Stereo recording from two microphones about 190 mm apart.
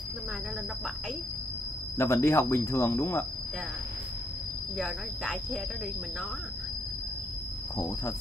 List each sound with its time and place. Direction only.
2.0 s speech: 15° left (ahead or behind)
4.7 s speech: 5° right (ahead or behind)
7.7 s speech: 15° left (ahead or behind)